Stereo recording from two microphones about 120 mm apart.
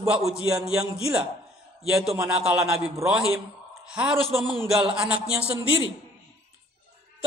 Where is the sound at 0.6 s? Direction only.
30° right (ahead or behind).